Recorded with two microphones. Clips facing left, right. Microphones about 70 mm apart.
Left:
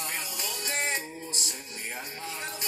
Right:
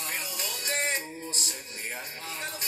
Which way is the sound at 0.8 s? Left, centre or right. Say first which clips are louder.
Even; right.